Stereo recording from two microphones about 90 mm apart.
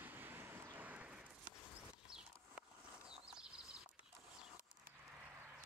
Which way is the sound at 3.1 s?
10° right (ahead or behind).